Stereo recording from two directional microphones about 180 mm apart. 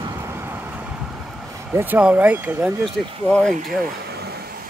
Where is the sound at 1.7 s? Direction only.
10° right (ahead or behind).